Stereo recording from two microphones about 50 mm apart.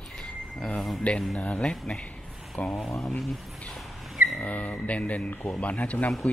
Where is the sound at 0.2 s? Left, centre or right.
Centre.